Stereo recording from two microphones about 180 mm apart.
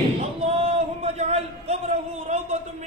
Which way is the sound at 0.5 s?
35° right (ahead or behind).